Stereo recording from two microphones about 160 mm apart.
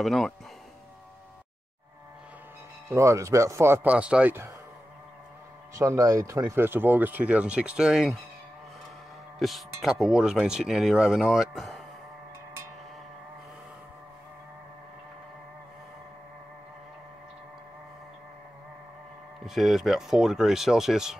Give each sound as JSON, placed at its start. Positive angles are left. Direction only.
{"t": 0.0, "sound": "speech", "side_deg": 0}
{"t": 2.9, "sound": "speech", "side_deg": -20}
{"t": 5.8, "sound": "speech", "side_deg": -20}
{"t": 9.4, "sound": "speech", "side_deg": 0}
{"t": 19.4, "sound": "speech", "side_deg": 0}